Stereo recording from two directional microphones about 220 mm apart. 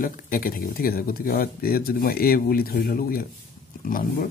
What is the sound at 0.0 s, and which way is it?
Speech, 40° left (ahead or behind).